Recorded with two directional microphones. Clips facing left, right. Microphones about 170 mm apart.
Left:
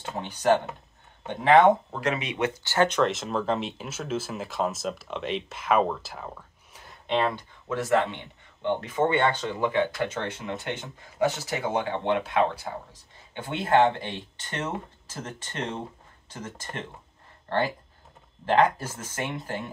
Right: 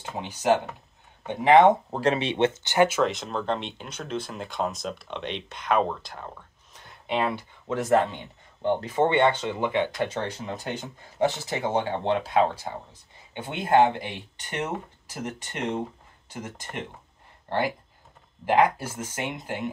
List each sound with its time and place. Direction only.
0.1 s speech: 10° right (ahead or behind)
1.9 s speech: 30° right (ahead or behind)
2.9 s speech: centre (ahead or behind)
7.1 s speech: 10° right (ahead or behind)
8.6 s speech: 30° right (ahead or behind)
10.1 s speech: 35° right (ahead or behind)
13.3 s speech: 20° right (ahead or behind)
17.5 s speech: 10° right (ahead or behind)